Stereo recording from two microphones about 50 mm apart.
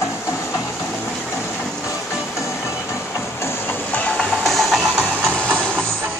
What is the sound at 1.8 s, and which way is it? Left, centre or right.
Music, left.